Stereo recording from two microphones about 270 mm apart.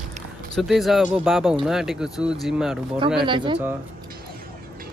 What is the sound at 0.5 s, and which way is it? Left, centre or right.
Speech, centre.